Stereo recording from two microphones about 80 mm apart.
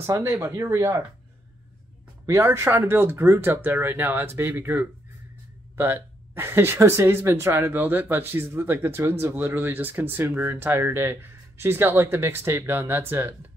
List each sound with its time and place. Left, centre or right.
0.2 s speech: right
2.2 s speech: right